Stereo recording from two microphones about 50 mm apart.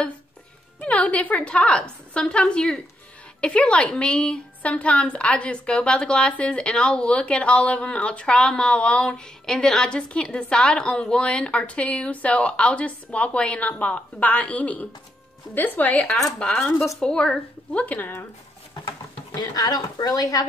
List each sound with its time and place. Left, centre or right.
0.7 s a woman's voice: left
15.9 s a woman's voice: left
16.7 s speech: left
17.0 s speech: centre
17.8 s speech: left